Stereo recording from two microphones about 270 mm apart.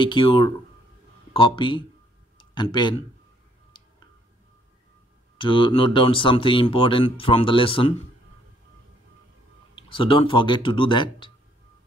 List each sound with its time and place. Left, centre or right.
0.0 s speech: centre
2.3 s a sound: centre
5.4 s speech: centre
9.8 s speech: centre